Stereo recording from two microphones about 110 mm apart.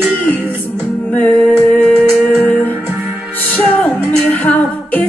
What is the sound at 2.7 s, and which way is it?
Music, 15° right (ahead or behind).